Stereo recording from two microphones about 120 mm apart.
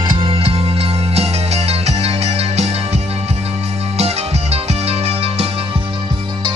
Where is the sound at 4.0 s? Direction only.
60° right (ahead or behind).